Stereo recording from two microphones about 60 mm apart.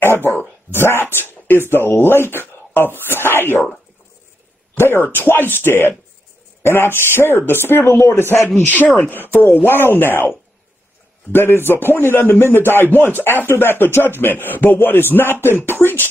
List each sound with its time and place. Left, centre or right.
0.0 s a man's voice: left
4.7 s a man's voice: left
11.3 s a man's voice: left